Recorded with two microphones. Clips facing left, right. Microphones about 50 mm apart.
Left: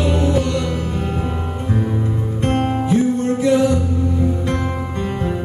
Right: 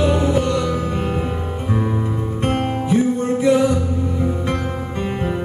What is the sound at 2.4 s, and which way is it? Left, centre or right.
Music, right.